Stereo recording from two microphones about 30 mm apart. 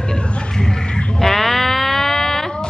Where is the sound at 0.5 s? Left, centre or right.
Left.